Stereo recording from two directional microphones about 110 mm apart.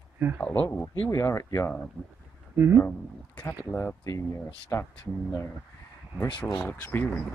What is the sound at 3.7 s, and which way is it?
Speech, 25° left (ahead or behind).